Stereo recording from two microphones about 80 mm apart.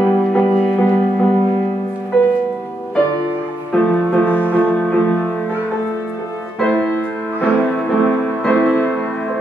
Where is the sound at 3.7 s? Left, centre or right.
Centre.